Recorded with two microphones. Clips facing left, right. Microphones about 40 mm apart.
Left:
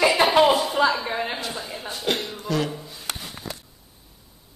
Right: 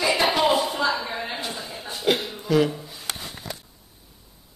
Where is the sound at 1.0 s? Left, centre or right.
Centre.